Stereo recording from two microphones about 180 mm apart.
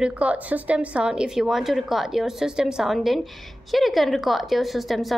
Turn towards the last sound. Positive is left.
turn(degrees=0)  # may be behind; listen again after turning